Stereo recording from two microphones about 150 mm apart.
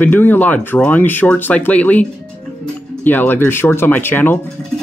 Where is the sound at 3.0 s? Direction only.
10° left (ahead or behind).